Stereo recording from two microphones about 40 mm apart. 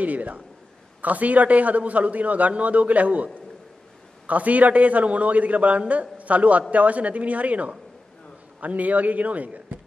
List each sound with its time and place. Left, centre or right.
0.0 s a man's voice: right
4.3 s a man's voice: right